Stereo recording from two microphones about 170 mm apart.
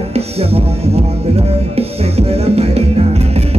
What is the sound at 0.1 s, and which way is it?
Music, 35° right (ahead or behind).